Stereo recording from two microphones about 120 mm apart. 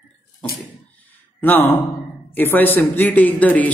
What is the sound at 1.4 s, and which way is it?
A man's voice, 15° left (ahead or behind).